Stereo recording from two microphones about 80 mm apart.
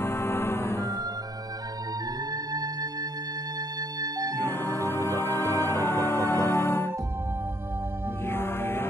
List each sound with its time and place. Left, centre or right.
0.0 s music: left
2.5 s music: right
4.4 s music: left
8.3 s music: left